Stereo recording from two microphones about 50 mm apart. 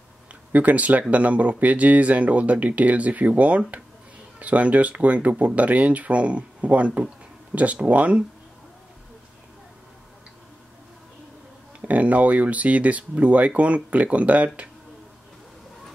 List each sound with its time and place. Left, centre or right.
0.5 s speech: right
11.8 s speech: right